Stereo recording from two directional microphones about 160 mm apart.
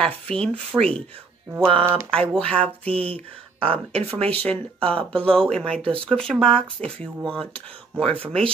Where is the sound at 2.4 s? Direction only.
5° left (ahead or behind).